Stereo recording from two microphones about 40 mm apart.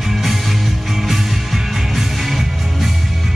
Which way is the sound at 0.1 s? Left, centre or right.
Centre.